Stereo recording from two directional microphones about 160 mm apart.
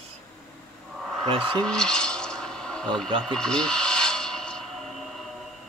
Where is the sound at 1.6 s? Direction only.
5° left (ahead or behind).